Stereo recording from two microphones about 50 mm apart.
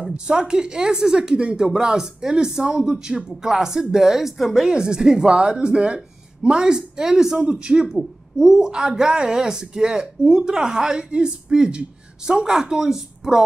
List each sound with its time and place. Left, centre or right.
0.1 s a woman's voice: centre